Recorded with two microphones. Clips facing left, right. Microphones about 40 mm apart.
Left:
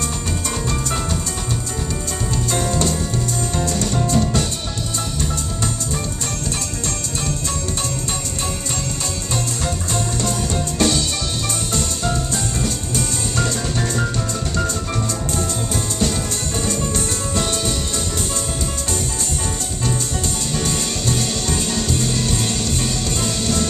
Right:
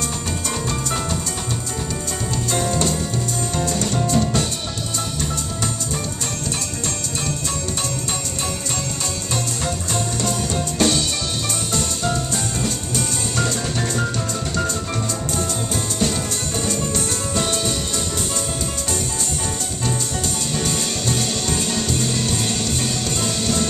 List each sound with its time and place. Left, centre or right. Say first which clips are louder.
2.5 s music: even; centre
4.2 s music: left 1 dB; centre
10.8 s music: even; centre
23.4 s music: left 1 dB; centre